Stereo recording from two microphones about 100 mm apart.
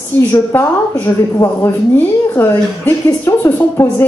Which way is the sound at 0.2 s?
25° left (ahead or behind).